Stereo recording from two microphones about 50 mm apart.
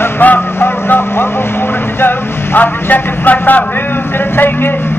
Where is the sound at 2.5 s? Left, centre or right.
Left.